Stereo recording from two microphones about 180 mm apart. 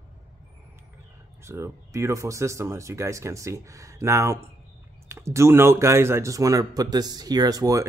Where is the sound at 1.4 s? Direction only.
15° right (ahead or behind).